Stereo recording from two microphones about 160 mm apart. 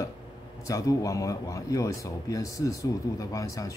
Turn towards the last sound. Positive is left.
turn(degrees=20)  # may be behind; listen again after turning